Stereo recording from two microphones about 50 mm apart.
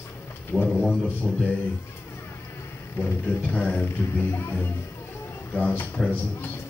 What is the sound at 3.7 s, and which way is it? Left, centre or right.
Speech, left.